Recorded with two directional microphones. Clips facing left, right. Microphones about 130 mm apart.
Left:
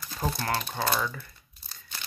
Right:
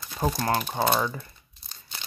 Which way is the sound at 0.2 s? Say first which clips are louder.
Right 4 dB; 20° right (ahead or behind).